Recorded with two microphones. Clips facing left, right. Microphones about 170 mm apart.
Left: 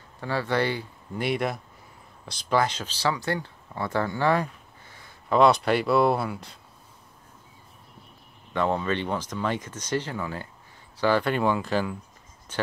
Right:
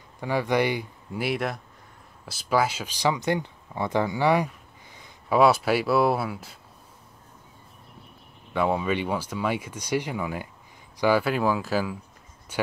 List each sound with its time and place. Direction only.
0.2 s speech: 15° right (ahead or behind)
4.9 s a sound: 15° right (ahead or behind)
5.4 s speech: 5° right (ahead or behind)
8.5 s speech: 10° right (ahead or behind)